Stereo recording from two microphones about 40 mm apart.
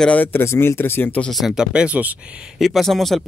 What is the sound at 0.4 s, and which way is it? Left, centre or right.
Speech, left.